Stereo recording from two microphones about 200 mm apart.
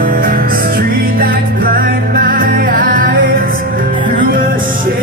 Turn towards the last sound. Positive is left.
turn(degrees=-45)  # may be behind; listen again after turning